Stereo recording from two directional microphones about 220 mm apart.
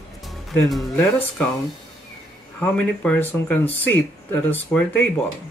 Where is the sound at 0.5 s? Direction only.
5° left (ahead or behind).